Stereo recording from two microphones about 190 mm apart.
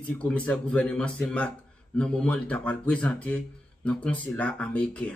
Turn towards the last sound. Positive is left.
turn(degrees=5)  # may be behind; listen again after turning